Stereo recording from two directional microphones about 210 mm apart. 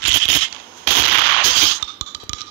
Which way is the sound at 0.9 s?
45° right (ahead or behind).